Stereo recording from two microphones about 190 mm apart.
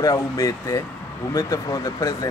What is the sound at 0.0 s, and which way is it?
Speech, 20° left (ahead or behind).